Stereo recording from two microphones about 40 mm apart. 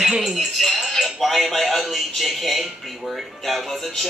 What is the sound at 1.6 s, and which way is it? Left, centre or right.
Speech, centre.